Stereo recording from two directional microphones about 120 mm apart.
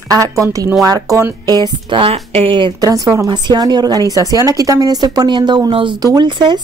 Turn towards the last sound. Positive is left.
turn(degrees=-40)  # may be behind; listen again after turning